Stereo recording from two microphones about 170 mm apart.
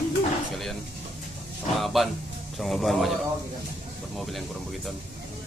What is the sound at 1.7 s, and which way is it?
Speech, centre (ahead or behind).